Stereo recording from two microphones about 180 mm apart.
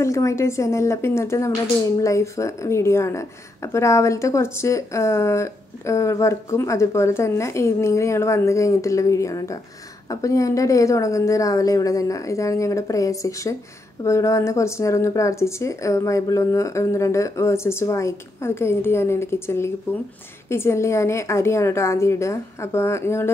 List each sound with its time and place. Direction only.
0.0 s a woman's voice: 15° left (ahead or behind)